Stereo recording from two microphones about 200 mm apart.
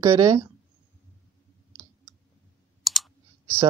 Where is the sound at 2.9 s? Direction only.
Centre (ahead or behind).